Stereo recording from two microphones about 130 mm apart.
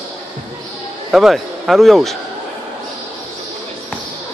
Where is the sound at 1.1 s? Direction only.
Centre (ahead or behind).